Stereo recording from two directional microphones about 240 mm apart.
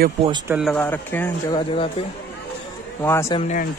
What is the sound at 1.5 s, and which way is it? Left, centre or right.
Speech, left.